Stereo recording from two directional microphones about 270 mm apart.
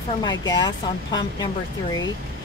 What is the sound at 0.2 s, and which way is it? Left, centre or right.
Speech, centre.